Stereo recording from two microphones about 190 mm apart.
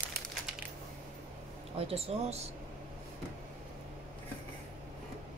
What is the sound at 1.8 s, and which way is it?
Speech, 30° right (ahead or behind).